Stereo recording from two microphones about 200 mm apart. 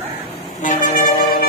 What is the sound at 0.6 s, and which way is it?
Vehicle, 40° left (ahead or behind).